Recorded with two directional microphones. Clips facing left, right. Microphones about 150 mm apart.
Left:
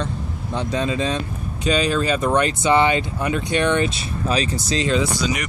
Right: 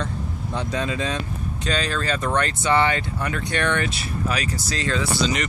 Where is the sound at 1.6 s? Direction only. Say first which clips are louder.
Left 6 dB; 10° left (ahead or behind).